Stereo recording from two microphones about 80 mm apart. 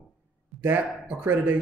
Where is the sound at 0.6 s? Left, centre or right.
Right.